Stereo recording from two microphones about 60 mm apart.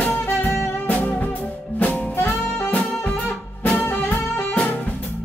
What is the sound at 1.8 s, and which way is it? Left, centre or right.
Music, left.